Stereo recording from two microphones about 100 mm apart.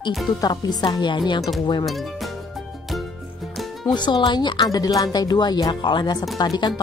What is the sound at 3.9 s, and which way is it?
Speech, 50° left (ahead or behind).